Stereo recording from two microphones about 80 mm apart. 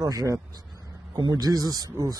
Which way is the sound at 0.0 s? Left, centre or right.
Right.